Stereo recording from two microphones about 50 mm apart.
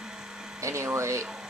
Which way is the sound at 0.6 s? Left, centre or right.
Right.